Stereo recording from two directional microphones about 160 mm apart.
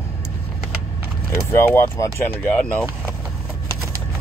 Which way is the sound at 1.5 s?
15° left (ahead or behind).